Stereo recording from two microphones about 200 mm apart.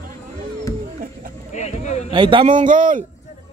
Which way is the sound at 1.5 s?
35° left (ahead or behind).